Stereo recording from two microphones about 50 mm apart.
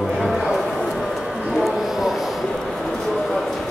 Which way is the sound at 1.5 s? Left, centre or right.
Centre.